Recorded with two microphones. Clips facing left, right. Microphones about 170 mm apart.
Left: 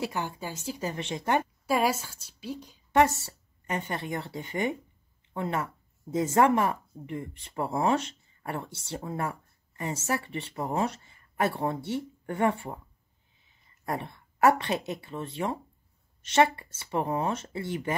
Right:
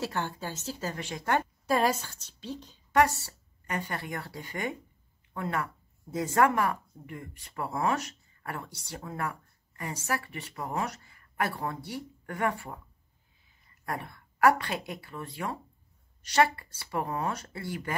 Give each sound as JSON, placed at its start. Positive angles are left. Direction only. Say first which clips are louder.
{"t": 0.0, "sound": "a woman's voice", "louder": "left 1 dB", "side_deg": 10}
{"t": 1.7, "sound": "a woman's voice", "louder": "even", "side_deg": 10}
{"t": 2.9, "sound": "a woman's voice", "louder": "left 2 dB", "side_deg": 20}
{"t": 13.8, "sound": "speech", "louder": "left 3 dB", "side_deg": 25}